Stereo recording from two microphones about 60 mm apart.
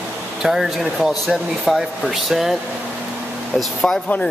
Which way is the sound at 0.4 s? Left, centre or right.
Centre.